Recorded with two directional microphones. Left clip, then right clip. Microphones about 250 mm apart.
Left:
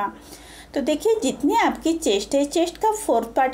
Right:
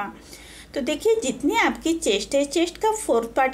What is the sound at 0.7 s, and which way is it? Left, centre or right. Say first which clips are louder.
Speech: left 1 dB; centre.